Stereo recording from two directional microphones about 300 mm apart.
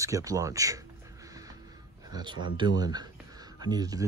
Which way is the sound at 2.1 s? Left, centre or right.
Centre.